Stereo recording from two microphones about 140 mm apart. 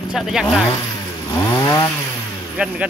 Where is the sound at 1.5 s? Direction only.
25° left (ahead or behind).